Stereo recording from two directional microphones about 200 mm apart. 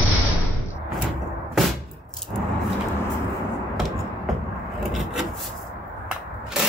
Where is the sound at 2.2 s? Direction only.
Centre (ahead or behind).